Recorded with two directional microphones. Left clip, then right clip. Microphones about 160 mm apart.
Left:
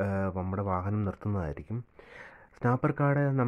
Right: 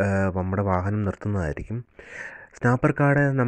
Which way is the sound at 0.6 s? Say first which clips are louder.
Right 7 dB; 25° right (ahead or behind).